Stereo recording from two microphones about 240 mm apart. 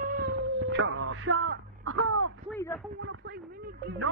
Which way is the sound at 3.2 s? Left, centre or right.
Right.